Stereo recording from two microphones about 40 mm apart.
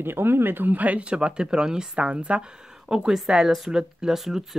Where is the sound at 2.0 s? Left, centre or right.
Right.